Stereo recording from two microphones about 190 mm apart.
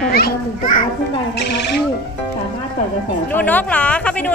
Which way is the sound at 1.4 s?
60° left (ahead or behind).